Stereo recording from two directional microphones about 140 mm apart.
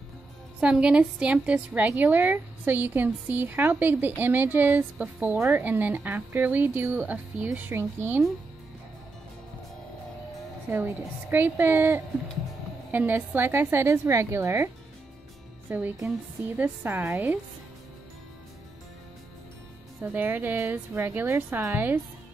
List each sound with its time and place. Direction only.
0.6 s a woman's voice: 5° right (ahead or behind)
10.7 s a woman's voice: 15° right (ahead or behind)
15.7 s a woman's voice: 15° right (ahead or behind)
20.0 s a woman's voice: 15° right (ahead or behind)